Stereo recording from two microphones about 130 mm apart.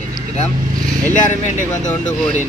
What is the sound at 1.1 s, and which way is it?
Speech, 75° left (ahead or behind).